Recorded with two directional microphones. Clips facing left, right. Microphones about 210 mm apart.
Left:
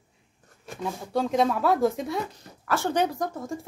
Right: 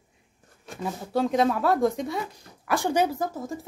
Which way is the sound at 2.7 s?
15° right (ahead or behind).